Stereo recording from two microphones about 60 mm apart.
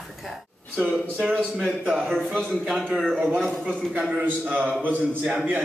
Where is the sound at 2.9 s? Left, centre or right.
Centre.